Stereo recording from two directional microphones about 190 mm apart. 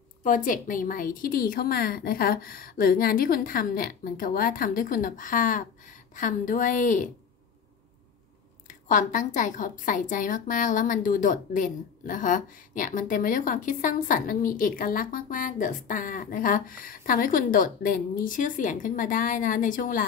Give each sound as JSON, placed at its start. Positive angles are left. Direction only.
{"t": 0.2, "sound": "a woman's voice", "side_deg": 45}
{"t": 8.6, "sound": "a woman's voice", "side_deg": 40}